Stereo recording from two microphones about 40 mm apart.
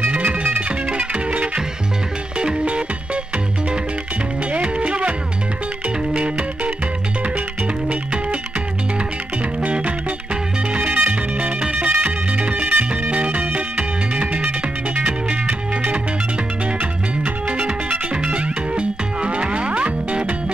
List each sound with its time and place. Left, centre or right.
0.1 s music: right
4.5 s music: right
6.1 s music: right
7.9 s music: right
9.6 s music: right
17.2 s music: right